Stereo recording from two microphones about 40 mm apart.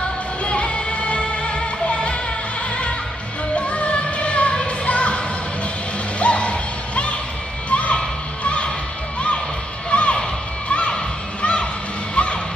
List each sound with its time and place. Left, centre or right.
0.4 s music: left
3.5 s music: left
9.8 s a sound: left
10.7 s music: left
12.2 s music: left